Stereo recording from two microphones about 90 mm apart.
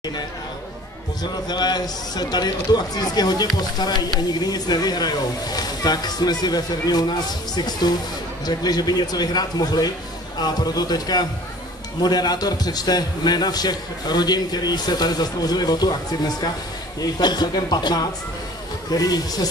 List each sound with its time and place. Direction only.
1.5 s speech: 50° left (ahead or behind)